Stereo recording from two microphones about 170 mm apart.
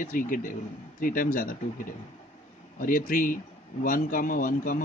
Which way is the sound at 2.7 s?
55° left (ahead or behind).